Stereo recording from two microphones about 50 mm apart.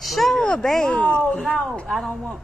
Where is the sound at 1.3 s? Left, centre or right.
Centre.